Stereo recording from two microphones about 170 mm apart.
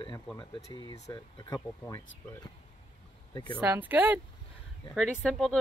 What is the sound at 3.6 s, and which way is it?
Speech, 10° right (ahead or behind).